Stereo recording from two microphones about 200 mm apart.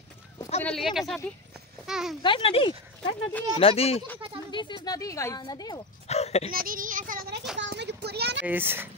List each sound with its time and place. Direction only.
0.6 s speech: 5° left (ahead or behind)
2.2 s speech: 25° left (ahead or behind)
6.0 s a sound: 30° left (ahead or behind)
6.5 s speech: 45° right (ahead or behind)
7.6 s a sound: 55° right (ahead or behind)
8.5 s a child's voice: 10° right (ahead or behind)